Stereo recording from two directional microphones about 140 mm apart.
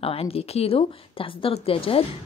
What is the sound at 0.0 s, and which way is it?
A woman's voice, 45° left (ahead or behind).